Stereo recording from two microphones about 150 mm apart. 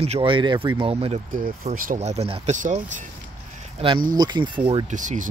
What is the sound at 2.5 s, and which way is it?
Speech, 55° right (ahead or behind).